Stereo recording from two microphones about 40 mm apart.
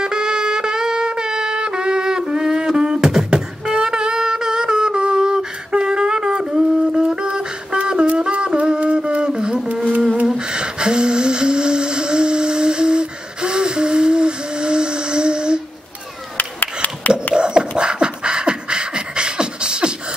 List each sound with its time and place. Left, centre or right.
0.0 s music: centre
10.2 s humming: centre
16.3 s a sound: left
17.3 s beatboxing: right